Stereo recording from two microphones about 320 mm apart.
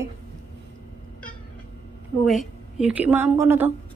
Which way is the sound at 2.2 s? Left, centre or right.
Centre.